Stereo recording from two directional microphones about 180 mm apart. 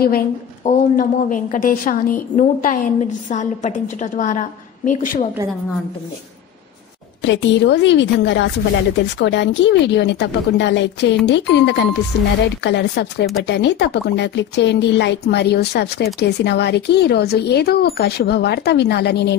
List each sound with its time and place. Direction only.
0.7 s a woman's voice: 45° left (ahead or behind)
7.2 s a woman's voice: 80° left